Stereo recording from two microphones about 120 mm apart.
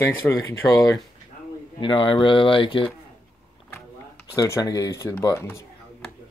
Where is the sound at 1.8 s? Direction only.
45° left (ahead or behind).